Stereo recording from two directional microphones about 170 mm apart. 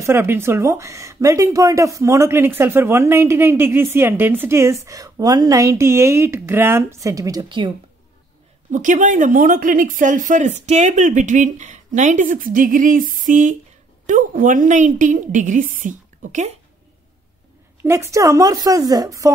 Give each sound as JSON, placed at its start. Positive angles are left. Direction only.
{"t": 0.0, "sound": "speech", "side_deg": -15}
{"t": 8.7, "sound": "a woman's voice", "side_deg": -45}
{"t": 17.8, "sound": "a woman's voice", "side_deg": -15}